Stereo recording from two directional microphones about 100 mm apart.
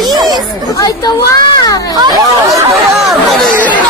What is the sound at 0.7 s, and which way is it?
Speech, 35° left (ahead or behind).